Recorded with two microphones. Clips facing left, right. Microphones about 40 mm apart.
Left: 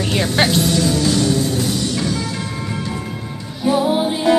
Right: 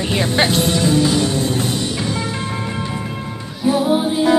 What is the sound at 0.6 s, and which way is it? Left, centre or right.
Music, right.